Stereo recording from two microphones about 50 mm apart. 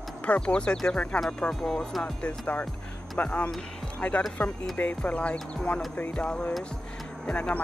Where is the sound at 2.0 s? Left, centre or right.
Left.